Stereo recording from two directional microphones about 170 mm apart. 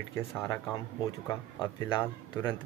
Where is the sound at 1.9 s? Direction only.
10° left (ahead or behind).